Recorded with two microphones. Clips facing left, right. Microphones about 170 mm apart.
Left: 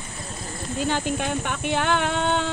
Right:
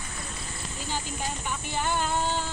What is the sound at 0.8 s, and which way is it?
Speech, 70° left (ahead or behind).